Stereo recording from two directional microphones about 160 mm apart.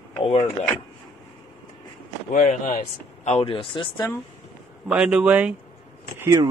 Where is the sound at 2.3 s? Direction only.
55° left (ahead or behind).